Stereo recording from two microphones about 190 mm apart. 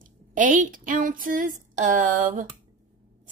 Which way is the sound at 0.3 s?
40° right (ahead or behind).